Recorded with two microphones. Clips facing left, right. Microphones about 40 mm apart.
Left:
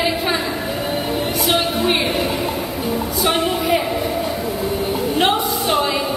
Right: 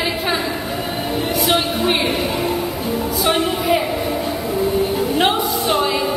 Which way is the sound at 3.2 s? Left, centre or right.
Centre.